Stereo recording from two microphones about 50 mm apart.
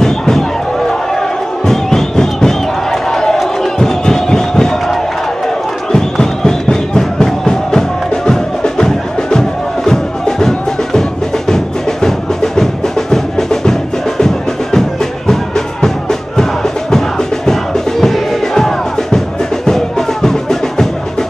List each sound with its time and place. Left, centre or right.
0.0 s a sound: centre
1.7 s crowd: centre
5.9 s music: centre